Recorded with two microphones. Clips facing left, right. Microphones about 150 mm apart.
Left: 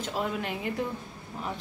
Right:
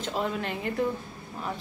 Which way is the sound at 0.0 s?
10° left (ahead or behind).